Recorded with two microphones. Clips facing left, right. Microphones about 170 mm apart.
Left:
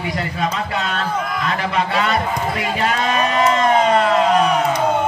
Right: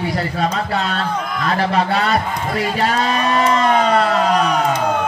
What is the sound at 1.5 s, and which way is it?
Speech, 35° right (ahead or behind).